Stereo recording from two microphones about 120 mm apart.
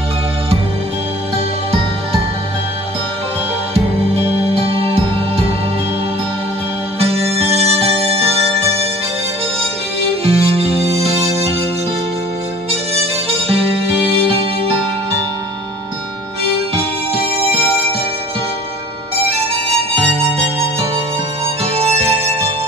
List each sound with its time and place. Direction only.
4.6 s music: 50° right (ahead or behind)
7.0 s music: 55° right (ahead or behind)
10.2 s music: 55° right (ahead or behind)
21.7 s harmonica: 60° right (ahead or behind)